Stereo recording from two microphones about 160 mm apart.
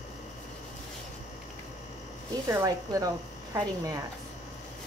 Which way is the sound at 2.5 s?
20° right (ahead or behind).